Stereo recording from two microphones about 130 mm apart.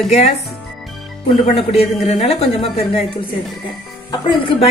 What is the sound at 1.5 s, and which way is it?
A woman's voice, 50° left (ahead or behind).